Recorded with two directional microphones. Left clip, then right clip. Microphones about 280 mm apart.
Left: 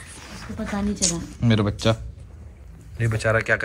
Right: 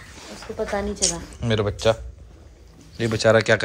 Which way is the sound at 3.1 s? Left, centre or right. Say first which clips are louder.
Right 4 dB; centre.